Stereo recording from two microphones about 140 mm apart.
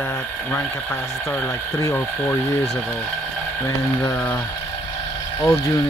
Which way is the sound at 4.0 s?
20° left (ahead or behind).